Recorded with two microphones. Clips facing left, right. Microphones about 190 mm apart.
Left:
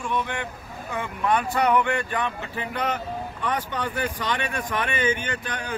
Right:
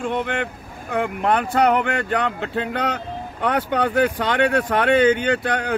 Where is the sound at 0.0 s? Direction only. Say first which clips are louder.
Right 5 dB; 60° right (ahead or behind).